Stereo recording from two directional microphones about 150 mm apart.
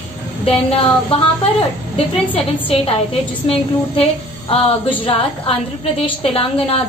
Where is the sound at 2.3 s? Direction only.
40° left (ahead or behind).